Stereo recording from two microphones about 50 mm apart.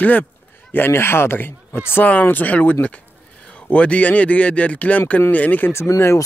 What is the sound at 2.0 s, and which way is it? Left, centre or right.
Speech, left.